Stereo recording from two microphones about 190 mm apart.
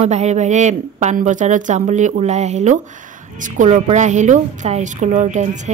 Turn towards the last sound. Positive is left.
turn(degrees=-40)  # may be behind; listen again after turning